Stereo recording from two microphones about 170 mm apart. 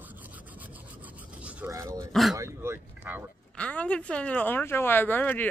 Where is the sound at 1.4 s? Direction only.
15° right (ahead or behind).